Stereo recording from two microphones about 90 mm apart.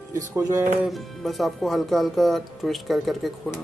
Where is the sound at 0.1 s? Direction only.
35° right (ahead or behind).